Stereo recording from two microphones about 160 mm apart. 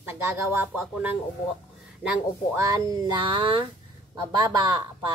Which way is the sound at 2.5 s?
20° right (ahead or behind).